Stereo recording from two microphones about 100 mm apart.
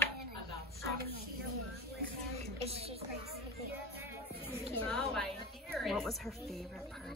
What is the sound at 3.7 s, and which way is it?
Music, 20° right (ahead or behind).